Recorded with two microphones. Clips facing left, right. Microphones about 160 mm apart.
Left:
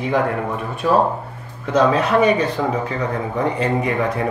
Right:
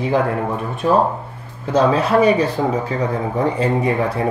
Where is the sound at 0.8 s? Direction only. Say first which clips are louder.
Right 1 dB; 30° right (ahead or behind).